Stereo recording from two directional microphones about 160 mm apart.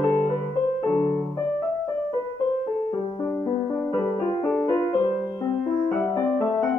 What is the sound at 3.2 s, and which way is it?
Music, 15° left (ahead or behind).